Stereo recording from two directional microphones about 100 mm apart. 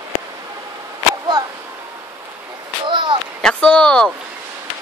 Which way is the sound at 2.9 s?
50° right (ahead or behind).